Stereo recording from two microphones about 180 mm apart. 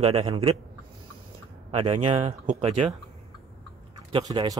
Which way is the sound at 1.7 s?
30° right (ahead or behind).